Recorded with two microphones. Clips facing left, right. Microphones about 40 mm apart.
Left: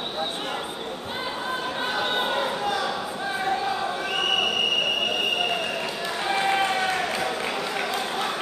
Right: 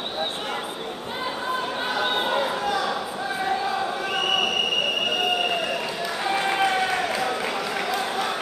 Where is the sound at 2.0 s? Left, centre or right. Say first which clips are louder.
Right 2 dB; centre.